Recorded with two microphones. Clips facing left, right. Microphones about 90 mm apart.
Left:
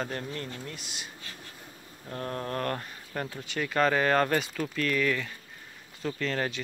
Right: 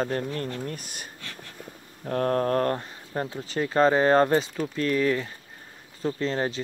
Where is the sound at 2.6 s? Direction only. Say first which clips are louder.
Right 5 dB; 30° right (ahead or behind).